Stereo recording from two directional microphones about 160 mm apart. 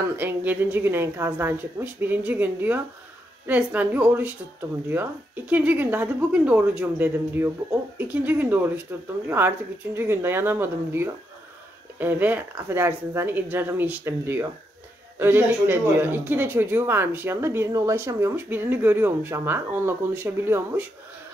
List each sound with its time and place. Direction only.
0.2 s speech: 10° right (ahead or behind)